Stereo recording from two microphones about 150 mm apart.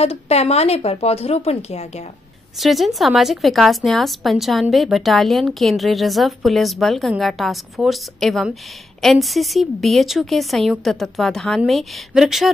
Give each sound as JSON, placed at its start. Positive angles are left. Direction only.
{"t": 0.0, "sound": "speech", "side_deg": 45}
{"t": 2.6, "sound": "a woman's voice", "side_deg": 0}